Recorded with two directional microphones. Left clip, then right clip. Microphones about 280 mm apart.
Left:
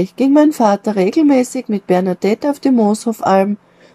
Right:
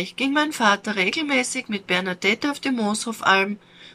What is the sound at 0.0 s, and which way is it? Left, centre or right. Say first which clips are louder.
Speech: left 10 dB; left.